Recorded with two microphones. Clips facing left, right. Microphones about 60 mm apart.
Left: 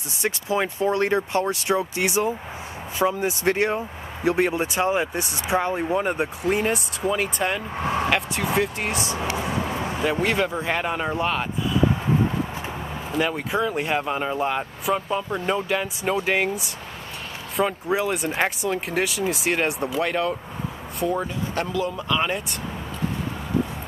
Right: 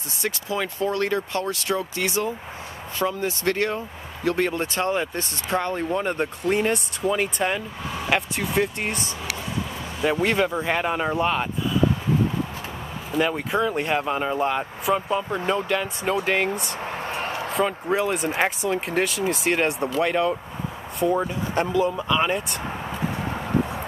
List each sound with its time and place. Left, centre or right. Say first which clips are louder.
0.2 s speech: left 3 dB; left; by 7.6 s centre
7.8 s speech: left 7 dB; left
8.1 s speech: left 1 dB; centre
9.4 s speech: left 4 dB; left
9.7 s a sound: left 6 dB; left
10.2 s speech: right 1 dB; centre
13.1 s speech: right 1 dB; centre